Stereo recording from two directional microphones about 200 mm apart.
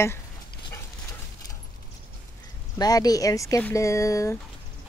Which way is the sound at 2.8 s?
20° left (ahead or behind).